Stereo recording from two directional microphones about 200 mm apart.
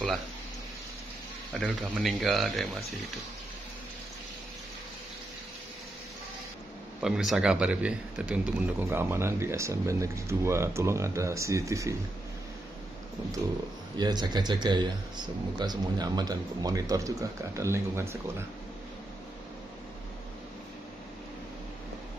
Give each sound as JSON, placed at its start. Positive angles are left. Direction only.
{"t": 1.8, "sound": "speech", "side_deg": 0}
{"t": 7.0, "sound": "a man's voice", "side_deg": -5}
{"t": 13.9, "sound": "a man's voice", "side_deg": -20}